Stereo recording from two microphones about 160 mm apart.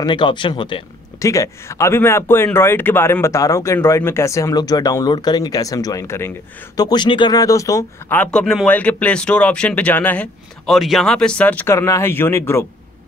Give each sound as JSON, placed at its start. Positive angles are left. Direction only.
{"t": 0.0, "sound": "speech", "side_deg": 30}
{"t": 1.2, "sound": "speech", "side_deg": 20}
{"t": 6.8, "sound": "speech", "side_deg": 25}
{"t": 8.2, "sound": "speech", "side_deg": 5}